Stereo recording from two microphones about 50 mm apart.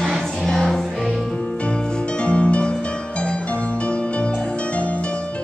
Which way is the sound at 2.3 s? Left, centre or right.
Left.